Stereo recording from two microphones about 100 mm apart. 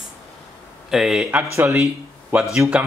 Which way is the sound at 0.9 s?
5° right (ahead or behind).